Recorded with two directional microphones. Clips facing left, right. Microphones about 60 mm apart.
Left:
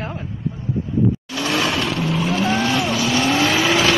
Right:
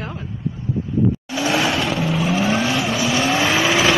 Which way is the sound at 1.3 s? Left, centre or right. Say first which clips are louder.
Right 1 dB; centre.